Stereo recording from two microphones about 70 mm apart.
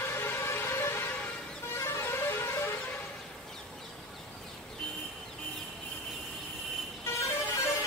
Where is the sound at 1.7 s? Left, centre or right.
Left.